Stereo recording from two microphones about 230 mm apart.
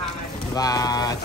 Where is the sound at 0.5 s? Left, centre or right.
Centre.